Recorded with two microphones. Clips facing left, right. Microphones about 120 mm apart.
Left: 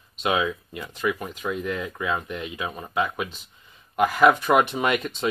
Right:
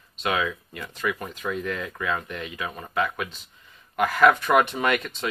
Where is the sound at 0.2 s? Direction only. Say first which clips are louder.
Left 2 dB; 20° left (ahead or behind).